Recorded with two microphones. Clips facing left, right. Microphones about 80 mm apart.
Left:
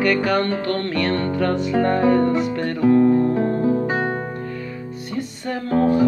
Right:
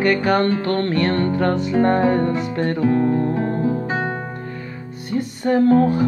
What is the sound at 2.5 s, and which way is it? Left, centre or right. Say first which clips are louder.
Music: left 2 dB; right.